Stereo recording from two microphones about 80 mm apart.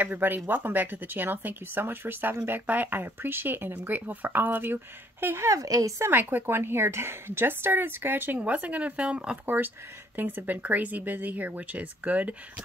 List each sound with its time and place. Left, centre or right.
0.0 s a woman's voice: right
6.0 s a woman's voice: right